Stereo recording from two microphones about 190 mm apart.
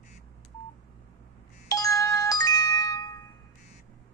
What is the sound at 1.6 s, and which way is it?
Music, 20° left (ahead or behind).